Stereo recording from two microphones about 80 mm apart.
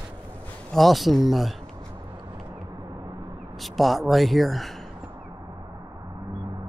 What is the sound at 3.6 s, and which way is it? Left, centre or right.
Speech, centre.